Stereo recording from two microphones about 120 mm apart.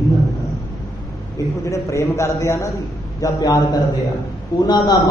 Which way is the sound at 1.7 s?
25° left (ahead or behind).